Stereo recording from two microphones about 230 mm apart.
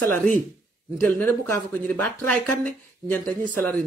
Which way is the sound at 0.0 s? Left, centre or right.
Centre.